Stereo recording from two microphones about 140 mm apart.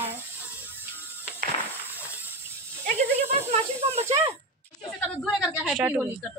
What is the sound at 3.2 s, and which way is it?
Speech, 50° right (ahead or behind).